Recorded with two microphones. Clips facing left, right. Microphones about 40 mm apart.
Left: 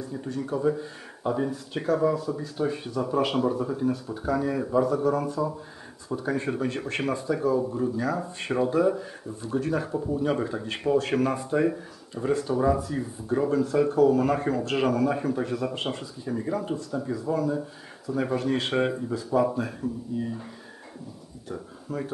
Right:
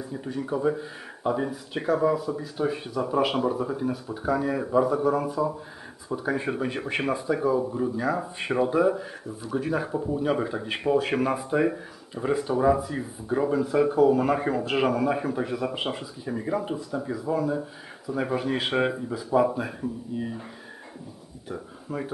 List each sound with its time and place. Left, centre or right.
0.0 s speech: centre
21.5 s speech: centre